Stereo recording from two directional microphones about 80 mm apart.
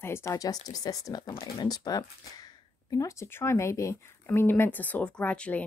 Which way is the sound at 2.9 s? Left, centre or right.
Left.